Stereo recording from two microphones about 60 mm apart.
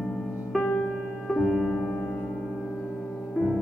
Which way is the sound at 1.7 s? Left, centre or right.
Centre.